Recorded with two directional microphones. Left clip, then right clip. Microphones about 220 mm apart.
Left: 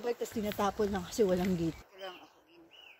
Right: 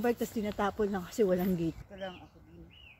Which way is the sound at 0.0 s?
45° right (ahead or behind).